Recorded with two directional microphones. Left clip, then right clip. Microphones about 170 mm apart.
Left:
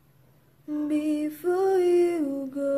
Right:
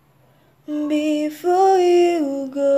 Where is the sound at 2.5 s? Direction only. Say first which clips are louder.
Right 12 dB; 15° left (ahead or behind).